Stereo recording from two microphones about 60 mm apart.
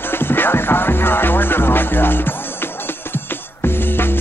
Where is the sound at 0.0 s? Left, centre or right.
Left.